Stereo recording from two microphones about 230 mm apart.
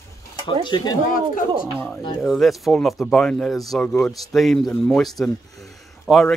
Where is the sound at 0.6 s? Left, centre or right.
Centre.